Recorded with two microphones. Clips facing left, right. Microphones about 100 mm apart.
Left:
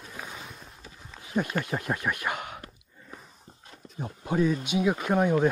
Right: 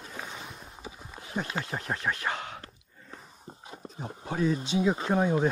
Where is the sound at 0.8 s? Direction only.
15° right (ahead or behind).